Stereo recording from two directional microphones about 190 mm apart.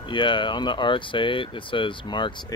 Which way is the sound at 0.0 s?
25° left (ahead or behind).